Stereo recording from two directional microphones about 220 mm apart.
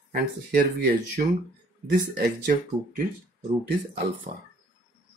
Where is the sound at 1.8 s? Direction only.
45° right (ahead or behind).